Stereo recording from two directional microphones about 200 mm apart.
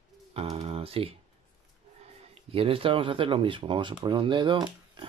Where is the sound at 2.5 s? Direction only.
30° right (ahead or behind).